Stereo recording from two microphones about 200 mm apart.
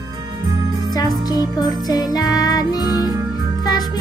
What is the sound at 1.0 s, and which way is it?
Music, 20° left (ahead or behind).